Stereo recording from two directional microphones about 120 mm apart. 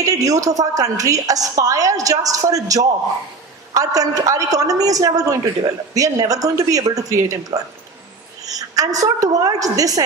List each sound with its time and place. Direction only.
0.0 s speech: 30° right (ahead or behind)